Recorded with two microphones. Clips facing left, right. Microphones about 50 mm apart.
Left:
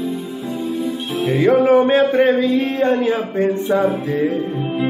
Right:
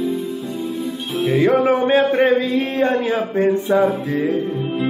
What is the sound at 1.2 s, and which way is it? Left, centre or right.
Music, centre.